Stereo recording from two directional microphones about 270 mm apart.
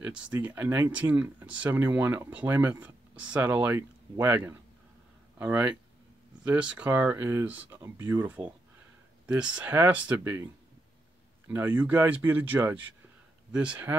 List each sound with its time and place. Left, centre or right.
0.0 s speech: centre